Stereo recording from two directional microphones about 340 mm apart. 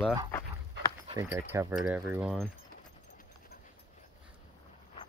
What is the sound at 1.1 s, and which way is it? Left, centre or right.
Speech, centre.